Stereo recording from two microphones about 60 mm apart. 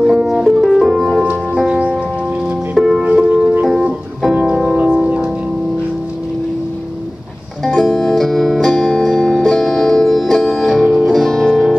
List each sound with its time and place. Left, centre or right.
0.0 s music: centre
1.2 s music: centre
2.7 s music: centre
3.1 s music: right
4.7 s music: centre
7.6 s music: centre